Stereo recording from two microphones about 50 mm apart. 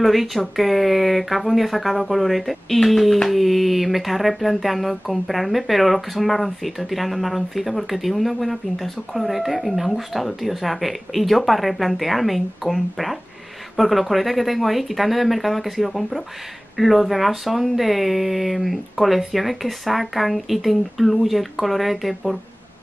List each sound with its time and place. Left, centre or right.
0.0 s speech: centre